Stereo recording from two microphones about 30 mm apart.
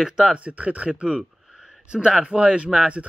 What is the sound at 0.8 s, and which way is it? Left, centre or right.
Speech, right.